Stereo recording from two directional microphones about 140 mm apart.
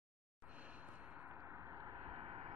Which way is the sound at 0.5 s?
10° right (ahead or behind).